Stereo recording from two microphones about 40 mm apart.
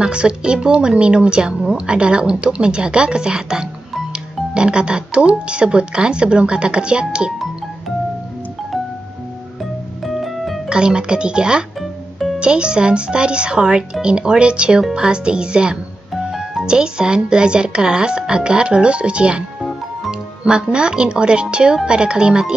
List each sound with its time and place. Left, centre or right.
0.0 s speech: right
10.0 s music: centre
10.7 s speech: centre
11.8 s music: centre
12.4 s speech: right
16.1 s music: centre
16.6 s speech: right